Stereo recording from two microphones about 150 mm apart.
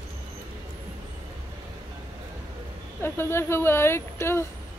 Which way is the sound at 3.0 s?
15° left (ahead or behind).